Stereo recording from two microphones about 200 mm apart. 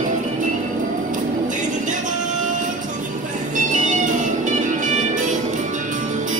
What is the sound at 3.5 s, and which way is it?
Music, 40° right (ahead or behind).